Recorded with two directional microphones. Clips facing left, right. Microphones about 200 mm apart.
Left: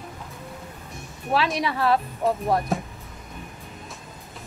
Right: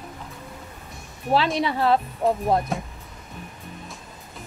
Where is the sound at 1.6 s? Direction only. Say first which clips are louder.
Right 1 dB; 25° right (ahead or behind).